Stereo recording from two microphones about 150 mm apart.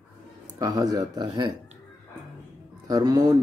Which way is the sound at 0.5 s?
25° right (ahead or behind).